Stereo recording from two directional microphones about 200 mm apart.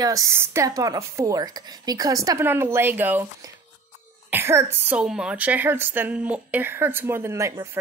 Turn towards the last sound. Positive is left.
turn(degrees=-15)  # may be behind; listen again after turning